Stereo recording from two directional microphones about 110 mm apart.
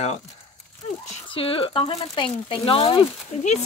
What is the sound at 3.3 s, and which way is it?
Speech, 90° left.